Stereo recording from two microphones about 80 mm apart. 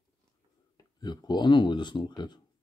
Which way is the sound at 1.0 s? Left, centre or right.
Left.